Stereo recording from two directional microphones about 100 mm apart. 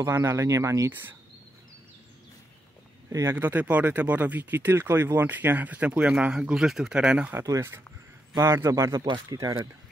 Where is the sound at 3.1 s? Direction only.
30° right (ahead or behind).